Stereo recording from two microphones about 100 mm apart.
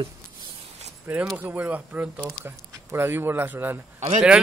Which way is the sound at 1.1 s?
20° right (ahead or behind).